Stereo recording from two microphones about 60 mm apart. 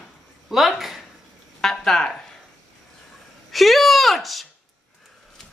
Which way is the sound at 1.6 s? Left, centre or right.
Centre.